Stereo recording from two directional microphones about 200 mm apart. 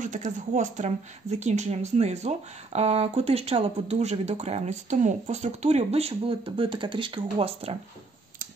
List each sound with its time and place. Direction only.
0.0 s speech: 40° right (ahead or behind)